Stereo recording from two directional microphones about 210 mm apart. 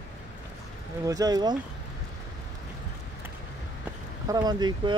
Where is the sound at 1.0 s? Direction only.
15° right (ahead or behind).